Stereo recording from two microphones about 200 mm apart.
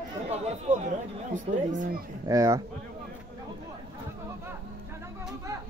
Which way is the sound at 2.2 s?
15° right (ahead or behind).